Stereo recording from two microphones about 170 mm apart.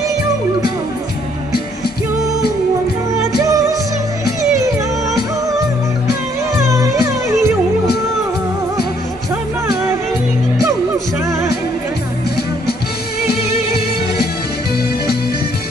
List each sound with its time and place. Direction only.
3.2 s music: 20° right (ahead or behind)
6.5 s music: 20° right (ahead or behind)